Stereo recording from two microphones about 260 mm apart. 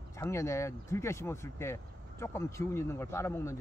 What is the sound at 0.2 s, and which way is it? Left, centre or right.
Speech, centre.